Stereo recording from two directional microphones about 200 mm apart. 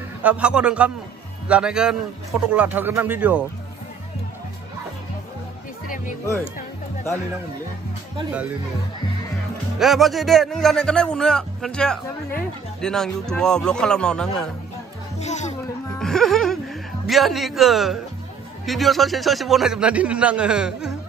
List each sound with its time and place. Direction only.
0.2 s a man's voice: 5° right (ahead or behind)
8.3 s speech: 5° right (ahead or behind)
9.8 s a man's voice: centre (ahead or behind)
15.1 s speech: 35° left (ahead or behind)
16.0 s music: centre (ahead or behind)
17.1 s a man's voice: centre (ahead or behind)